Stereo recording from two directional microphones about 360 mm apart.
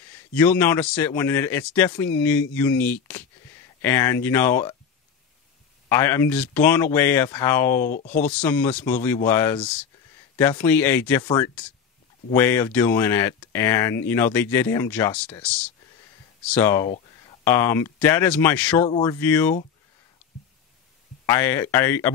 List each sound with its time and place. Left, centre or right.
0.1 s a man's voice: centre
5.9 s a man's voice: centre
7.9 s speech: left
8.2 s a man's voice: centre
21.3 s speech: centre